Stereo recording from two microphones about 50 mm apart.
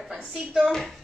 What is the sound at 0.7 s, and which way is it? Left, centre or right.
Speech, centre.